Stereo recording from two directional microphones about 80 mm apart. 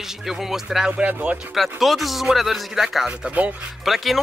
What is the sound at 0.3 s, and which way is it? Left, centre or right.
Speech, centre.